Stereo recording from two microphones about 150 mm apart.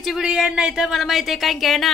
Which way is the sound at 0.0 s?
5° right (ahead or behind).